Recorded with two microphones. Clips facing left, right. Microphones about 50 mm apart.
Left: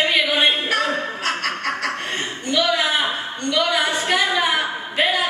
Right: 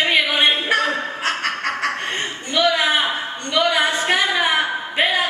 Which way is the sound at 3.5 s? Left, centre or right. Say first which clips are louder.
Right 3 dB; right.